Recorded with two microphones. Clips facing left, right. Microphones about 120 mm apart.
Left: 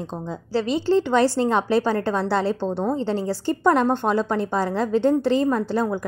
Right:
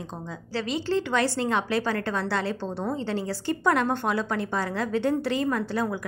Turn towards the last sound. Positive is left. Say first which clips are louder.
# left 5 dB
turn(degrees=30)  # may be behind; listen again after turning